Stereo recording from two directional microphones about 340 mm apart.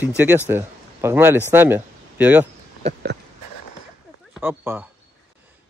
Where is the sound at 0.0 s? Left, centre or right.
Centre.